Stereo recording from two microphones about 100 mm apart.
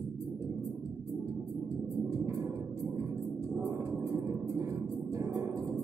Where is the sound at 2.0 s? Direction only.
35° right (ahead or behind).